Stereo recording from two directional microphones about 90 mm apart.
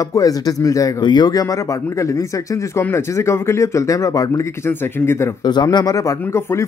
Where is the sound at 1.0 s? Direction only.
50° left (ahead or behind).